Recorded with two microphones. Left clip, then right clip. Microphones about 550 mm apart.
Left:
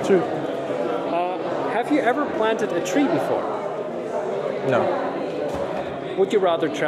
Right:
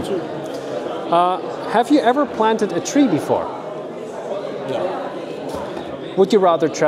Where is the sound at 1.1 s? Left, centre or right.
Right.